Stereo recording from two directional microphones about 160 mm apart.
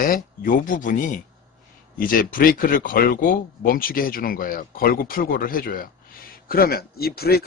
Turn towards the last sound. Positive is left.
turn(degrees=75)  # may be behind; listen again after turning